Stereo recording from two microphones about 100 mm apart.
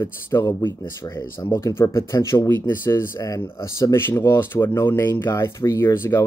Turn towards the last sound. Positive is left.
turn(degrees=25)  # may be behind; listen again after turning